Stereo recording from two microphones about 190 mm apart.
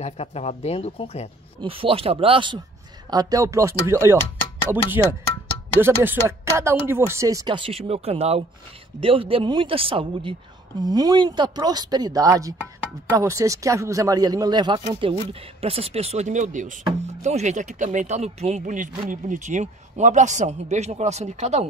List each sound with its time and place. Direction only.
0.0 s speech: 35° left (ahead or behind)
1.6 s speech: 30° right (ahead or behind)